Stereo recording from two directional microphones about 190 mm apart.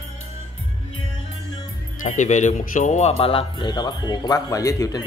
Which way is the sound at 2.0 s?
40° left (ahead or behind).